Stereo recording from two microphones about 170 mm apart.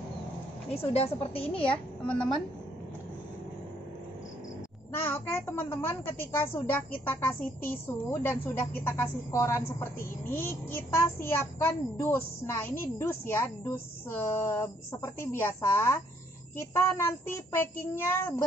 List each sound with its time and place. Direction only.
0.7 s a woman's voice: 35° left (ahead or behind)
2.0 s a woman's voice: 5° left (ahead or behind)
5.0 s a woman's voice: 15° left (ahead or behind)